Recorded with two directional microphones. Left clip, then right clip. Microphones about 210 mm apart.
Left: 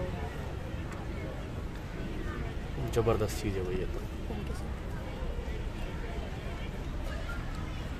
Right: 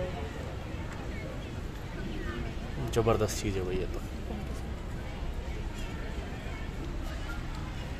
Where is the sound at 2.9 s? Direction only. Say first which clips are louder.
Right 2 dB; 15° right (ahead or behind).